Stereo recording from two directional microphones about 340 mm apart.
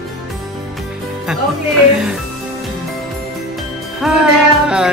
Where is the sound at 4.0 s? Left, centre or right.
Centre.